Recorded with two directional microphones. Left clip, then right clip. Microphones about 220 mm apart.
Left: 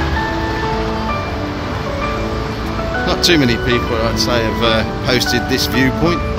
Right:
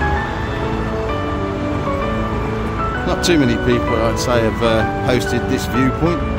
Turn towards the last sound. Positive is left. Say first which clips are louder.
# left 2 dB
turn(degrees=-10)  # may be behind; listen again after turning